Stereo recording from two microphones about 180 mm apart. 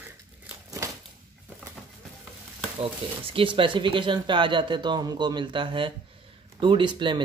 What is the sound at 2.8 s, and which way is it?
Speech, 30° right (ahead or behind).